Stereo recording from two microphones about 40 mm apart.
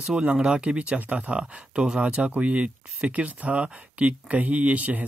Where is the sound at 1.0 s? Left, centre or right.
Right.